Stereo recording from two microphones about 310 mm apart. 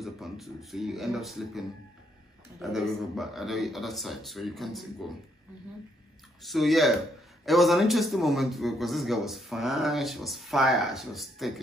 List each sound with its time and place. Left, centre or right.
0.0 s a man's voice: centre
6.4 s a man's voice: centre